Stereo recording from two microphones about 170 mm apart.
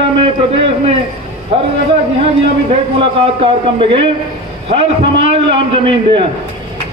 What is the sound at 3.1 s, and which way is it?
A man's voice, 30° right (ahead or behind).